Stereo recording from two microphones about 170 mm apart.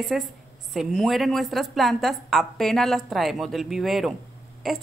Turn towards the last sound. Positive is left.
turn(degrees=0)  # may be behind; listen again after turning